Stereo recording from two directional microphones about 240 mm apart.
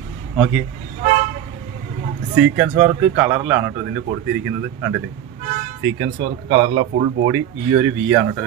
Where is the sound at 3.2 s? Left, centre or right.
Centre.